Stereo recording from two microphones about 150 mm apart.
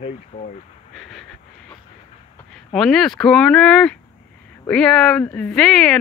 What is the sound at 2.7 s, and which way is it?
Speech, centre (ahead or behind).